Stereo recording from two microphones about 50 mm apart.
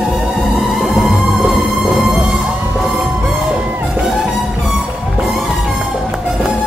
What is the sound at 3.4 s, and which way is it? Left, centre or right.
Music, centre.